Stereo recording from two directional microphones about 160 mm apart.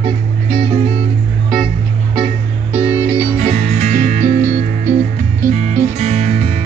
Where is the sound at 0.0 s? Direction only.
35° right (ahead or behind).